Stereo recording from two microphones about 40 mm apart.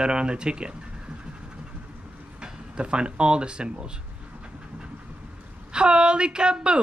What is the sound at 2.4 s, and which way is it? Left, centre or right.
Speech, right.